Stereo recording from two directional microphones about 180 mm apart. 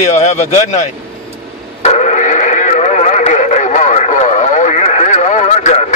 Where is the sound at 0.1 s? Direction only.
40° left (ahead or behind).